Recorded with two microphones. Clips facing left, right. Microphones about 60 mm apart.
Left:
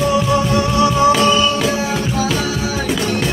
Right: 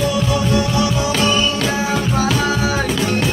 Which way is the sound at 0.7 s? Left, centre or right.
Left.